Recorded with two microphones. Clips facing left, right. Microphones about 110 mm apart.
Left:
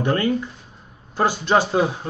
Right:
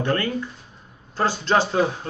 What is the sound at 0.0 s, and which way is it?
A man's voice, 15° left (ahead or behind).